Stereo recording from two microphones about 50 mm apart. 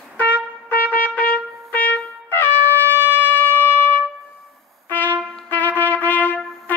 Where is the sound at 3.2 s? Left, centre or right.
Left.